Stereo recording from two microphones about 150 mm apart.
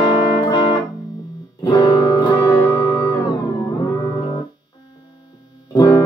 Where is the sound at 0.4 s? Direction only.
25° left (ahead or behind).